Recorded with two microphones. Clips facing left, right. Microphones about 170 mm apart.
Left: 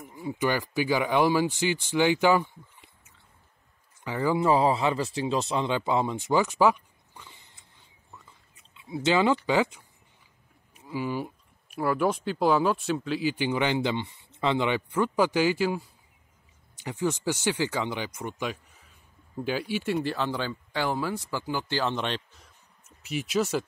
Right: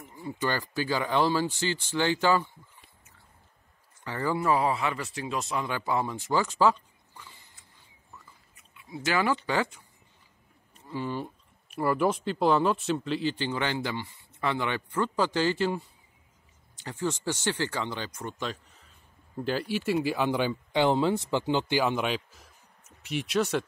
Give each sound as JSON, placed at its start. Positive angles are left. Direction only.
{"t": 0.0, "sound": "speech", "side_deg": 15}
{"t": 4.5, "sound": "speech", "side_deg": 30}
{"t": 16.8, "sound": "speech", "side_deg": 15}